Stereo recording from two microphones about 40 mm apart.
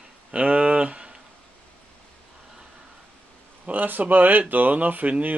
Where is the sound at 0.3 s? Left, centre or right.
Right.